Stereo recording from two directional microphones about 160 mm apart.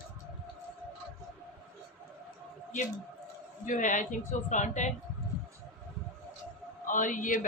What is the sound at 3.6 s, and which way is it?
A woman's voice, 55° left (ahead or behind).